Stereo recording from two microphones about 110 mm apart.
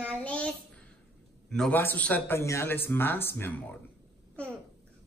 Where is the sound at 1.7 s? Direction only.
15° left (ahead or behind).